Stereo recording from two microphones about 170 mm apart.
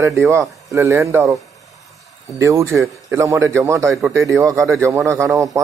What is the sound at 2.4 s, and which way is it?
Speech, 15° right (ahead or behind).